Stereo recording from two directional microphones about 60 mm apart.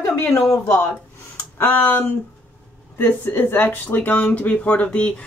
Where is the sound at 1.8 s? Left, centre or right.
Left.